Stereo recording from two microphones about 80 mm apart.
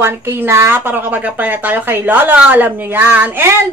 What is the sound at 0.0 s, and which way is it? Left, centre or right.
Speech, right.